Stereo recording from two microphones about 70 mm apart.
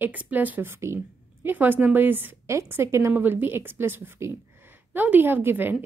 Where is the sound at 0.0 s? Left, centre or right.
Right.